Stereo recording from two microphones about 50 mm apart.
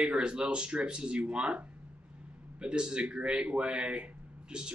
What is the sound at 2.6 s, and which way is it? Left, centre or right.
Speech, centre.